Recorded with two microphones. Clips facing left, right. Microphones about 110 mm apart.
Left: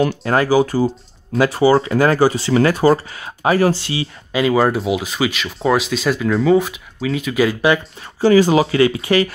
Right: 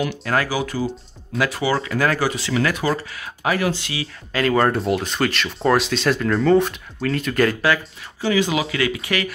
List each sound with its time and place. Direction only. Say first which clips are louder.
0.0 s speech: left 5 dB; 30° left (ahead or behind)
4.3 s speech: left 3 dB; 10° left (ahead or behind)
8.2 s speech: left 8 dB; 40° left (ahead or behind)